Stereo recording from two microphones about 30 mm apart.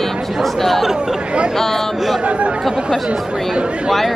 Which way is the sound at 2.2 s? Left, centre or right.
Right.